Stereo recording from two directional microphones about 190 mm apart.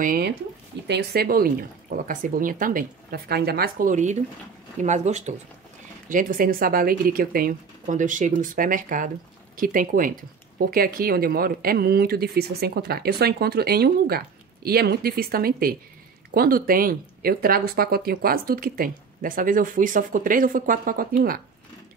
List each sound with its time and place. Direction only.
0.0 s speech: 50° right (ahead or behind)